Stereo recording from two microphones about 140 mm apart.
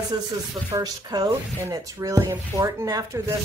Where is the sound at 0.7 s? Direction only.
25° right (ahead or behind).